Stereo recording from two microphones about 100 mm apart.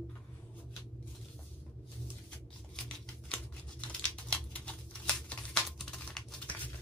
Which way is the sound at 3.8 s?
10° left (ahead or behind).